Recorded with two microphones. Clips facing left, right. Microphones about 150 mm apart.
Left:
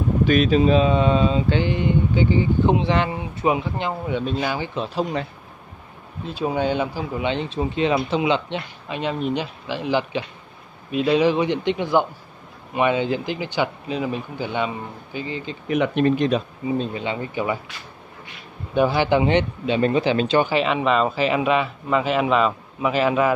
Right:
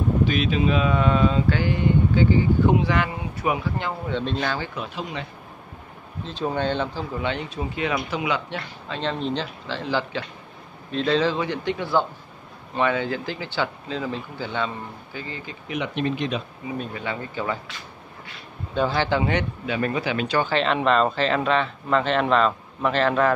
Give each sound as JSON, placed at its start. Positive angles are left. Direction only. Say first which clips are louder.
{"t": 0.3, "sound": "speech", "louder": "left 6 dB", "side_deg": 40}
{"t": 4.2, "sound": "speech", "louder": "left 2 dB", "side_deg": 10}
{"t": 4.7, "sound": "speech", "louder": "left 7 dB", "side_deg": 35}
{"t": 6.2, "sound": "speech", "louder": "left 3 dB", "side_deg": 10}
{"t": 15.7, "sound": "speech", "louder": "left 7 dB", "side_deg": 50}
{"t": 16.7, "sound": "speech", "louder": "left 4 dB", "side_deg": 25}
{"t": 18.8, "sound": "speech", "louder": "left 4 dB", "side_deg": 15}
{"t": 20.4, "sound": "speech", "louder": "left 1 dB", "side_deg": 5}